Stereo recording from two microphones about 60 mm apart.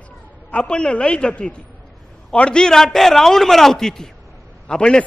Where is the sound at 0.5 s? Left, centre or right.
Centre.